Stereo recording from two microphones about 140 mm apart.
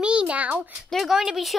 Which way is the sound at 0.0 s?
10° right (ahead or behind).